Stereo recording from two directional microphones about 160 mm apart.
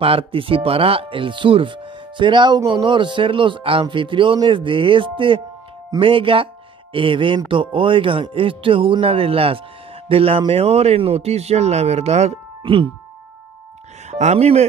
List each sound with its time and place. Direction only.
0.0 s speech: 35° right (ahead or behind)
14.1 s speech: 45° right (ahead or behind)